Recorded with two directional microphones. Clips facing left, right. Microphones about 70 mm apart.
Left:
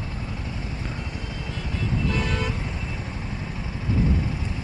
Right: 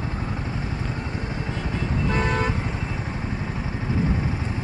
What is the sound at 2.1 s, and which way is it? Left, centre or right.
Vehicle, right.